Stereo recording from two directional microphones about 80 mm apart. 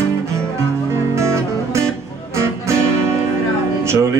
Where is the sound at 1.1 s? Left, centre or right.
Right.